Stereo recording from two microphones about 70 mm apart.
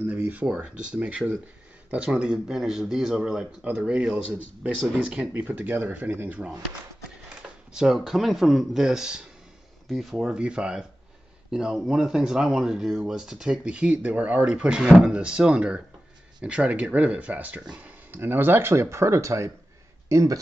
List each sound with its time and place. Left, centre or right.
0.0 s speech: right
7.7 s speech: centre
11.9 s speech: centre; by 20.3 s right